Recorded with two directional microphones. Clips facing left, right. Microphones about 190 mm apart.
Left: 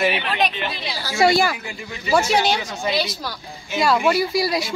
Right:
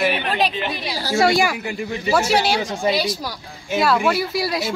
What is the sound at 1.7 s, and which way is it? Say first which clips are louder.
Speech: right 7 dB; 50° right (ahead or behind).